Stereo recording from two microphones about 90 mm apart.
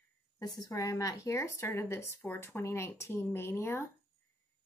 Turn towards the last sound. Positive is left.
turn(degrees=30)  # may be behind; listen again after turning